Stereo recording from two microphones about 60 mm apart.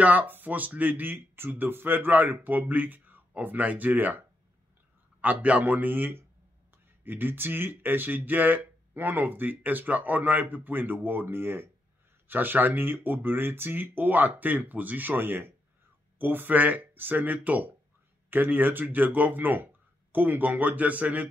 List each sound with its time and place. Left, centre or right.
0.0 s speech: right
5.2 s speech: right